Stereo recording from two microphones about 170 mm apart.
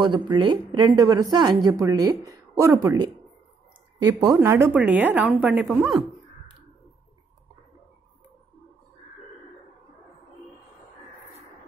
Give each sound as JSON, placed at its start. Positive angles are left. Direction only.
{"t": 0.0, "sound": "speech", "side_deg": -25}
{"t": 4.1, "sound": "a woman's voice", "side_deg": -20}